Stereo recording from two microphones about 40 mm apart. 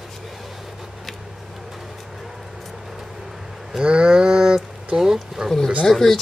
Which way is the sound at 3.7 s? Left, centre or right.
Right.